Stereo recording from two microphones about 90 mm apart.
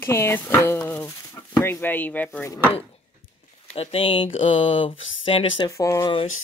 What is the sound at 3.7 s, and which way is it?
Speech, 90° left.